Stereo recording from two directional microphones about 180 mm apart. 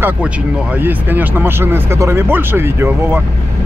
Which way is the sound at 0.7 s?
10° right (ahead or behind).